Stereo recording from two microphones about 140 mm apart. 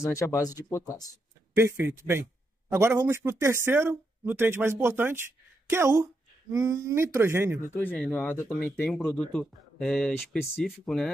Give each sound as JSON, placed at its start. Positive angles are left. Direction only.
{"t": 0.0, "sound": "speech", "side_deg": 20}
{"t": 1.6, "sound": "speech", "side_deg": -20}
{"t": 7.7, "sound": "speech", "side_deg": 10}